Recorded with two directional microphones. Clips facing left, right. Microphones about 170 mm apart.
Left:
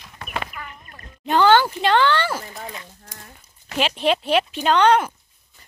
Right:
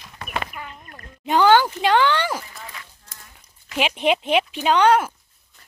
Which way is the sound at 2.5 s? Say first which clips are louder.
Left 5 dB; 25° left (ahead or behind).